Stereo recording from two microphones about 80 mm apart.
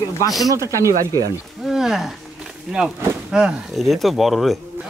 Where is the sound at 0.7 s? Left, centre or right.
Right.